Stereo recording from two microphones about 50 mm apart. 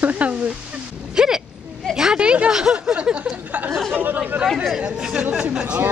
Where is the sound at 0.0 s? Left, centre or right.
Right.